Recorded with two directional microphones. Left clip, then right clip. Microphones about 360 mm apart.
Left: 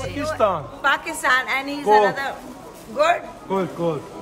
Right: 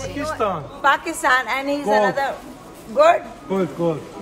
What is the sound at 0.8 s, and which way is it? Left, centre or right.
Speech, centre.